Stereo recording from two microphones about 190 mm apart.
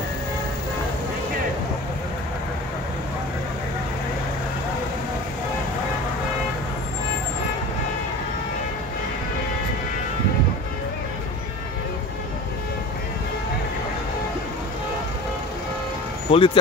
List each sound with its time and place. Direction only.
16.3 s speech: 30° left (ahead or behind)